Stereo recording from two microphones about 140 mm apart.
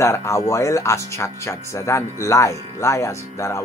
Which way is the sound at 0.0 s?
20° left (ahead or behind).